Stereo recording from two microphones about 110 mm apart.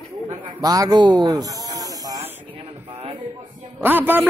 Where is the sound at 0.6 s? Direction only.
35° right (ahead or behind).